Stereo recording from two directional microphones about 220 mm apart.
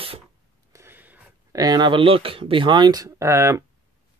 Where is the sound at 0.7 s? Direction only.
10° right (ahead or behind).